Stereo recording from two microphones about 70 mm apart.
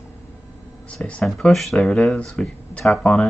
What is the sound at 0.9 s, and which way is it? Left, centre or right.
Speech, centre.